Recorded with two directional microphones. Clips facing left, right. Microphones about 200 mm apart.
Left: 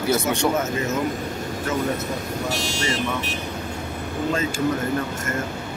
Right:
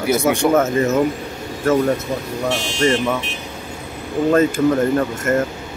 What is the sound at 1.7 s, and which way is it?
Speech, 50° right (ahead or behind).